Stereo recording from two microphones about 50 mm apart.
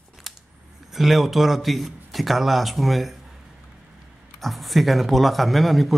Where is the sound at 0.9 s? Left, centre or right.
Centre.